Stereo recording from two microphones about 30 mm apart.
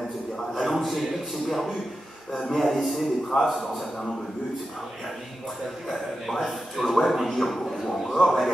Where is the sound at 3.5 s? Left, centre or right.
Centre.